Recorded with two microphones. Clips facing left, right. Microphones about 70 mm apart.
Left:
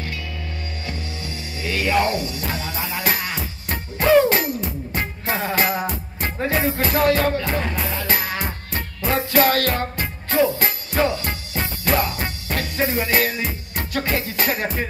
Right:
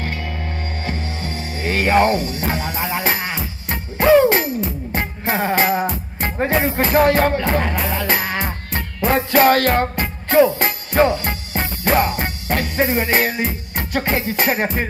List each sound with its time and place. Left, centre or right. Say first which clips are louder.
0.0 s music: right 5 dB; right
7.3 s music: right 4 dB; right